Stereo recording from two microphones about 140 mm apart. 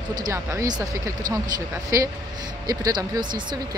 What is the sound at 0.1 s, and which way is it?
Speech, 25° right (ahead or behind).